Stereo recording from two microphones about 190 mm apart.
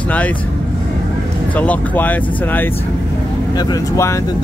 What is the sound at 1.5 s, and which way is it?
Speech, 10° left (ahead or behind).